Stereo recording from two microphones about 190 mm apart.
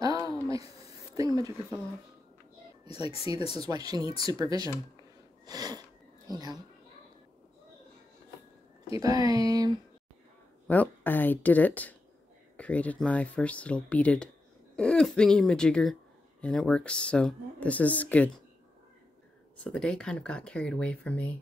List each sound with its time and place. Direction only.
0.0 s a sound: 20° right (ahead or behind)
1.1 s speech: 20° right (ahead or behind)
3.5 s speech: 20° right (ahead or behind)
5.4 s a sound: 20° right (ahead or behind)
6.3 s speech: 20° right (ahead or behind)
8.9 s speech: 20° right (ahead or behind)
10.7 s speech: 10° left (ahead or behind)
19.6 s speech: 5° left (ahead or behind)